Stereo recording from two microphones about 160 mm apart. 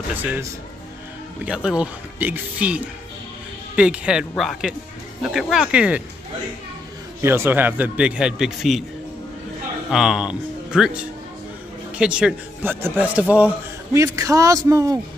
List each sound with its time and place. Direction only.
0.1 s a man's voice: 10° right (ahead or behind)
7.2 s a man's voice: 15° right (ahead or behind)
9.8 s speech: 5° right (ahead or behind)
12.0 s a man's voice: 5° right (ahead or behind)
13.9 s a man's voice: 20° right (ahead or behind)